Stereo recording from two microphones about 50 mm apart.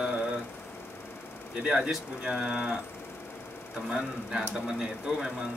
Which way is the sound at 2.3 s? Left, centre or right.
Centre.